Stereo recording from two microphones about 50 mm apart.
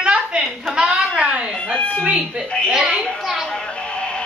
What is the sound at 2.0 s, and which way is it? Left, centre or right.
Doorbell, right.